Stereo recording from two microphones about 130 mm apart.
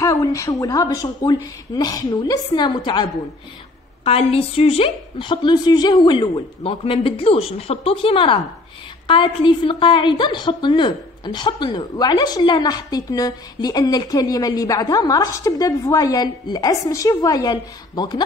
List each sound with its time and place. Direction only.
0.0 s a woman's voice: 25° left (ahead or behind)
4.0 s a woman's voice: 50° left (ahead or behind); by 18.2 s 35° left (ahead or behind)